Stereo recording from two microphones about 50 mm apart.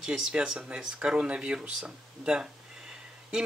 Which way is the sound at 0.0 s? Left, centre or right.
Centre.